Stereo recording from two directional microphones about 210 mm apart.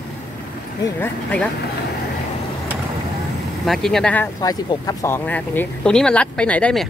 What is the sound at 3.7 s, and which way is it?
Speech, centre (ahead or behind).